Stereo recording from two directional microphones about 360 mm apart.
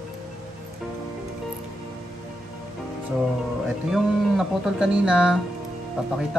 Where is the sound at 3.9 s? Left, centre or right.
Centre.